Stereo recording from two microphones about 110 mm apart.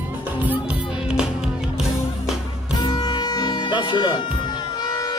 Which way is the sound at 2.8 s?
40° left (ahead or behind).